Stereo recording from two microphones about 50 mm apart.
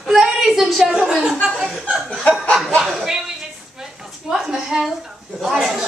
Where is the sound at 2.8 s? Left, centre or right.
Centre.